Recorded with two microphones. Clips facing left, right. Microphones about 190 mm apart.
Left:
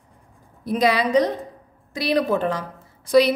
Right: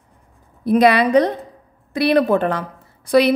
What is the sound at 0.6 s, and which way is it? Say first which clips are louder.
A woman's voice: right 6 dB; 60° right (ahead or behind).